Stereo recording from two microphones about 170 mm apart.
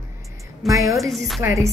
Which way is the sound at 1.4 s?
15° right (ahead or behind).